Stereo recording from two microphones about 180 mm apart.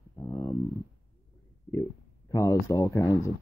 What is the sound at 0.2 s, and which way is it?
Dog, 20° left (ahead or behind).